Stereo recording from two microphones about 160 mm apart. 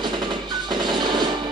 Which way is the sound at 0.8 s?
25° right (ahead or behind).